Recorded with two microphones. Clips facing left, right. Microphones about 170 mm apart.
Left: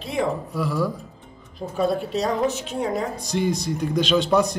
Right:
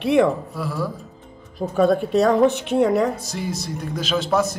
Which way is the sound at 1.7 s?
50° right (ahead or behind).